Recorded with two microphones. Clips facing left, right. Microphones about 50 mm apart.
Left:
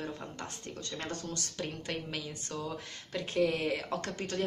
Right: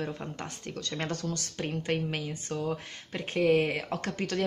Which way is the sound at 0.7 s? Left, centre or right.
Right.